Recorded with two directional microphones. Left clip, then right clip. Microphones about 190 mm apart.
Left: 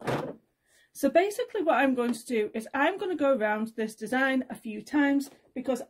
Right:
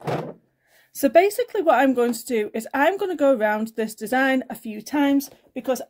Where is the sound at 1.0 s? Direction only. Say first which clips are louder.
Right 7 dB; 25° right (ahead or behind).